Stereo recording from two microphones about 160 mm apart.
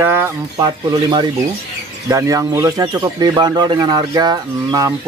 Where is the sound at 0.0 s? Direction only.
15° right (ahead or behind).